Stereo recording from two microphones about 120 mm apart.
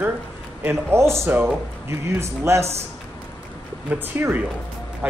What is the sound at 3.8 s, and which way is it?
Speech, 15° right (ahead or behind).